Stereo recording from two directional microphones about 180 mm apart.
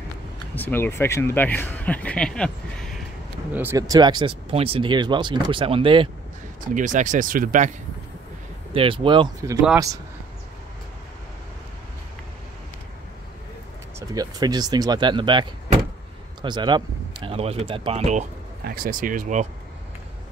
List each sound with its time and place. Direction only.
0.6 s speech: 10° left (ahead or behind)
3.5 s speech: 15° right (ahead or behind)
6.7 s speech: 45° right (ahead or behind)
8.7 s speech: 30° right (ahead or behind)
13.9 s speech: 20° right (ahead or behind)
18.6 s speech: 55° right (ahead or behind)